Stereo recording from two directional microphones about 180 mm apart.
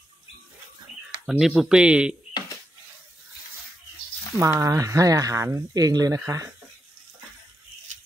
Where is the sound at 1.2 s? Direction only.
Centre (ahead or behind).